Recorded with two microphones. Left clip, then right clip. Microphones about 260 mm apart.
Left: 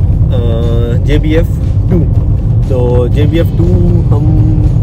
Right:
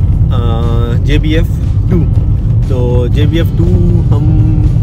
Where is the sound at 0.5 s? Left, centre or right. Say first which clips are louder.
Left 2 dB; centre.